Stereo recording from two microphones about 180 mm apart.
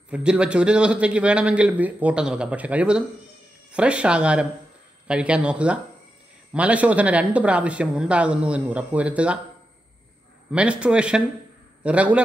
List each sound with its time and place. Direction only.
0.1 s speech: 5° right (ahead or behind)
10.5 s speech: 5° right (ahead or behind)